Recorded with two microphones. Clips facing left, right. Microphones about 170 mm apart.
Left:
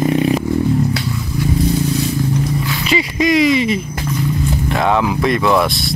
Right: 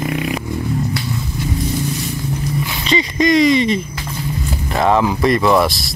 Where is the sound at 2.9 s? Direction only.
5° left (ahead or behind).